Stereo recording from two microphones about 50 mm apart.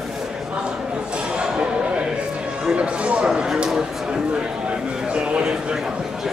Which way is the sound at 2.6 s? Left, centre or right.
Right.